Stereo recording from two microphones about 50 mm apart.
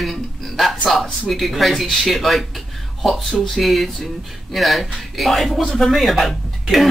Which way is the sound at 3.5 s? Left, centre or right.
Centre.